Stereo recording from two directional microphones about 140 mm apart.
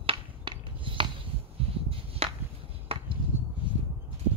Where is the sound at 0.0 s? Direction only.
40° right (ahead or behind).